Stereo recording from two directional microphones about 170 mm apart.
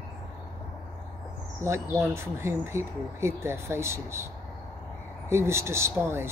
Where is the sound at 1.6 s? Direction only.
15° right (ahead or behind).